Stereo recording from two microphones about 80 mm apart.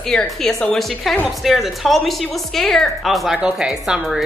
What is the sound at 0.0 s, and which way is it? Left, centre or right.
A woman's voice, centre.